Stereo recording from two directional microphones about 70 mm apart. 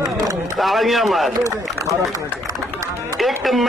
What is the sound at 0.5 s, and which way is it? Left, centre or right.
Speech, centre.